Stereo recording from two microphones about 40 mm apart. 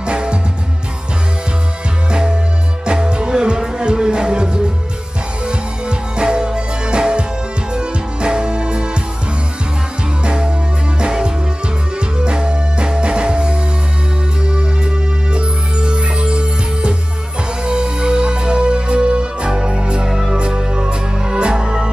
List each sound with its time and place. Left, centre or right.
0.0 s music: right
2.0 s music: right
5.5 s music: right
10.2 s music: right